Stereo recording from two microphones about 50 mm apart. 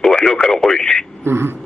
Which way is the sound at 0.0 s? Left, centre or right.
Centre.